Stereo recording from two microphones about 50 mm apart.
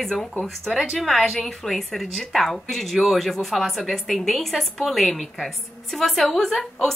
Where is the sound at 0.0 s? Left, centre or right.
Centre.